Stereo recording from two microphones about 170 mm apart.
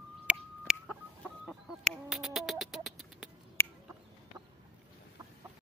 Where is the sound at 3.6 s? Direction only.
15° left (ahead or behind).